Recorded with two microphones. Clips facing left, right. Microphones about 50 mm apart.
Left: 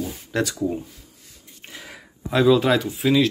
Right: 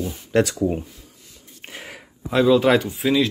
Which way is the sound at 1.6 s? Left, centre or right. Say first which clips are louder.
Right 3 dB; right.